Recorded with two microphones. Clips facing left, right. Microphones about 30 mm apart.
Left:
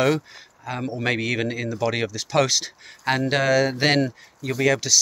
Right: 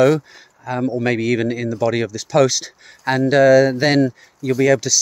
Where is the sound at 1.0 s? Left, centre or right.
Centre.